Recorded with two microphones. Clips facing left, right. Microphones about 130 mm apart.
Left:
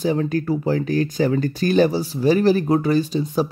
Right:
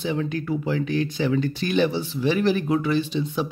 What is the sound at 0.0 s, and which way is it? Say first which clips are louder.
Speech: left 5 dB; 40° left (ahead or behind).